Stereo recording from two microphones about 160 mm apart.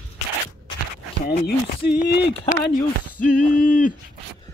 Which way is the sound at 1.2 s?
75° left (ahead or behind).